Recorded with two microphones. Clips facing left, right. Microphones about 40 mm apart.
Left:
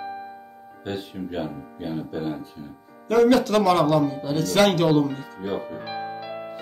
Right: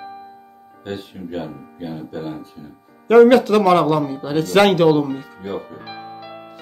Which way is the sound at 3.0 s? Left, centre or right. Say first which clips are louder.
Right 7 dB; right.